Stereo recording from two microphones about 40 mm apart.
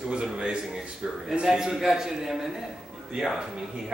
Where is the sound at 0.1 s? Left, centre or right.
Right.